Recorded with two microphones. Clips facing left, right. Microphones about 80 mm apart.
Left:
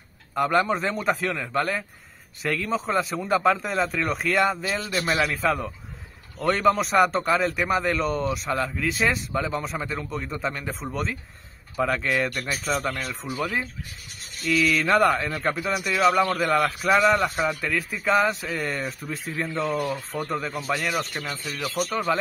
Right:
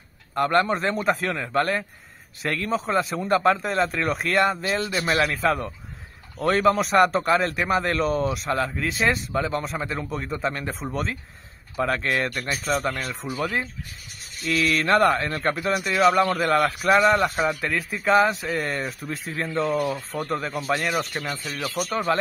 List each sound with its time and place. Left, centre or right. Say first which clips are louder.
0.3 s a man's voice: right 1 dB; centre